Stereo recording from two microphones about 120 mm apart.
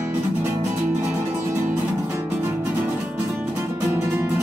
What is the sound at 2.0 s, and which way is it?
Music, 25° right (ahead or behind).